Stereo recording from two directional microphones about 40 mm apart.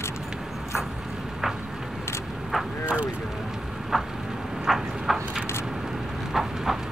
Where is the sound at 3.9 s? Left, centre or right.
Centre.